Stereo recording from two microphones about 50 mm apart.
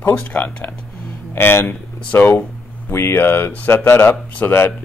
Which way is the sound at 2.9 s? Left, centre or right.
Left.